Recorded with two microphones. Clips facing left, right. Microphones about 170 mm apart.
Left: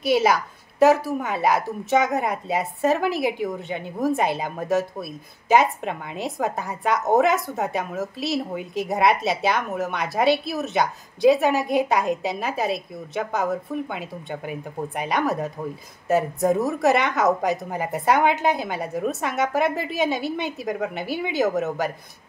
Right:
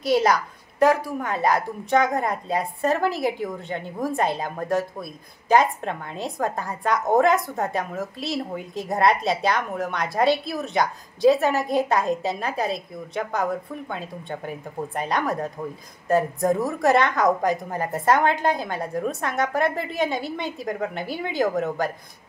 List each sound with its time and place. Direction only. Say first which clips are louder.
0.0 s a woman's voice: even; 5° left (ahead or behind)
8.3 s speech: left 2 dB; 20° left (ahead or behind)
8.8 s a woman's voice: even; 5° left (ahead or behind)